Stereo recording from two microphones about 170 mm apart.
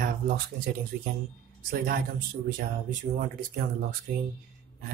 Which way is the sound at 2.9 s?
55° right (ahead or behind).